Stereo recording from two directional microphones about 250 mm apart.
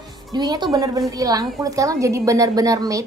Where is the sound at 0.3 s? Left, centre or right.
Centre.